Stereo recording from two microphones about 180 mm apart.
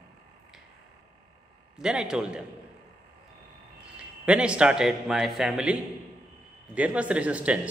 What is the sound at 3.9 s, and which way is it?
A man's voice, 5° right (ahead or behind).